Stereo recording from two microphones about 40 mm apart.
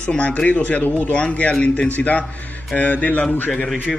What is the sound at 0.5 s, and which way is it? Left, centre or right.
Speech, left.